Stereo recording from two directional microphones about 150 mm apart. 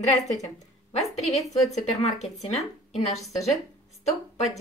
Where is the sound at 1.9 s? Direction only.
45° left (ahead or behind).